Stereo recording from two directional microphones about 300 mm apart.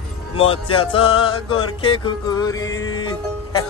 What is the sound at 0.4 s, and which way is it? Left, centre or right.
Music, centre.